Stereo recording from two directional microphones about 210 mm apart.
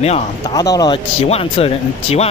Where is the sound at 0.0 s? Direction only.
30° left (ahead or behind).